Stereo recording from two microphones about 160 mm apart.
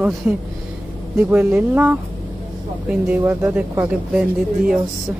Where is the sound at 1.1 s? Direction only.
10° right (ahead or behind).